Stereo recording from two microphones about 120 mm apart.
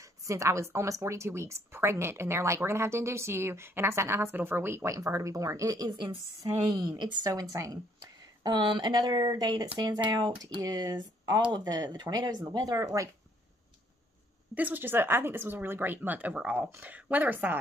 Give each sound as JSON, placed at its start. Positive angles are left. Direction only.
{"t": 0.0, "sound": "a sound", "side_deg": -25}
{"t": 0.7, "sound": "a woman's voice", "side_deg": -25}
{"t": 14.5, "sound": "speech", "side_deg": -15}